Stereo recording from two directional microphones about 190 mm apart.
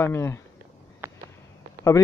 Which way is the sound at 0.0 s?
15° left (ahead or behind).